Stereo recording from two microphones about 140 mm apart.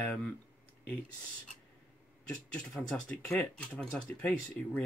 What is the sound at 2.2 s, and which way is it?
Speech, 5° left (ahead or behind).